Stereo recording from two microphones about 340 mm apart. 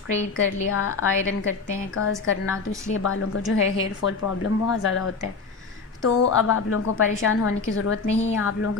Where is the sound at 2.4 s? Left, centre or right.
Centre.